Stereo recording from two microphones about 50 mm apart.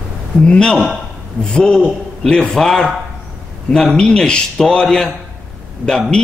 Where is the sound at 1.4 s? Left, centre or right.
Centre.